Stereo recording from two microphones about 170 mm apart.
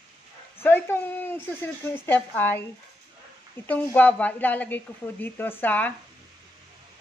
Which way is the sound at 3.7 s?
10° left (ahead or behind).